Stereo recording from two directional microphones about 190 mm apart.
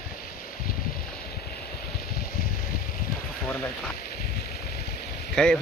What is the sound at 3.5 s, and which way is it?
Speech, 5° left (ahead or behind).